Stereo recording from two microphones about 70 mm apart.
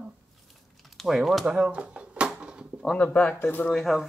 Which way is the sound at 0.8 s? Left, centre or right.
Centre.